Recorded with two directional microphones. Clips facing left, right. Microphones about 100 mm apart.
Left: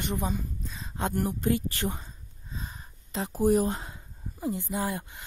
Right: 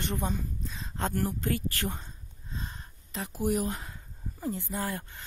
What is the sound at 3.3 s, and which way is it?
Speech, 35° left (ahead or behind).